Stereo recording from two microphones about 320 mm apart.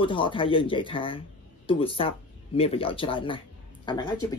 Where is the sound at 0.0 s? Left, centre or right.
Centre.